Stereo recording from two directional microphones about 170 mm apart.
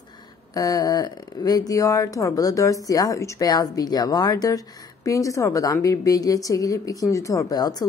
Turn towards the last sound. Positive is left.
turn(degrees=25)  # may be behind; listen again after turning